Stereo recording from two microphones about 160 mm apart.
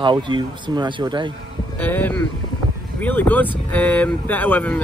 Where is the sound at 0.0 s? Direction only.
30° right (ahead or behind).